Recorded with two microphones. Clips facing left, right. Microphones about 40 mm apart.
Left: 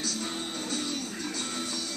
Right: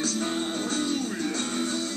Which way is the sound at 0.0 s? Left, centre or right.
Right.